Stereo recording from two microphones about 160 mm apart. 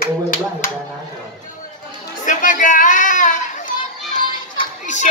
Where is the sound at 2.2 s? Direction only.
55° left (ahead or behind).